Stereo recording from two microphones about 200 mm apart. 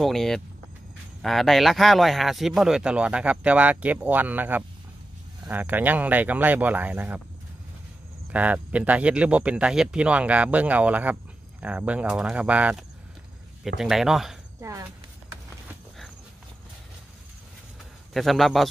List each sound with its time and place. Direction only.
0.0 s speech: centre (ahead or behind)
8.3 s speech: 5° right (ahead or behind)
14.6 s speech: 15° right (ahead or behind)
18.1 s speech: centre (ahead or behind)